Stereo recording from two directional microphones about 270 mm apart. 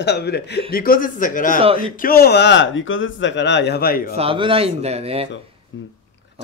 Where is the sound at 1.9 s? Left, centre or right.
Left.